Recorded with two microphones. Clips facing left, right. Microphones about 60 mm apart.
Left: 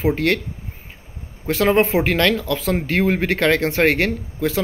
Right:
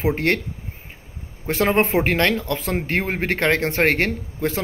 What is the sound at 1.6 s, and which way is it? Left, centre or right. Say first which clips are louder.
Speech: left 2 dB; right.